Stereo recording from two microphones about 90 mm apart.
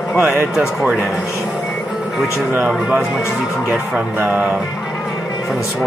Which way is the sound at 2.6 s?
5° right (ahead or behind).